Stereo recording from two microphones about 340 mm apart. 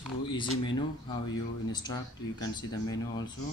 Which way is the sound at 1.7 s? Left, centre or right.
Centre.